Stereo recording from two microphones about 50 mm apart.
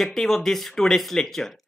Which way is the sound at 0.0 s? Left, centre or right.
Centre.